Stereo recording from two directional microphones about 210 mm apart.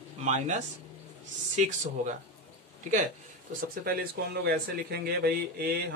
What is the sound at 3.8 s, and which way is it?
Speech, 45° right (ahead or behind).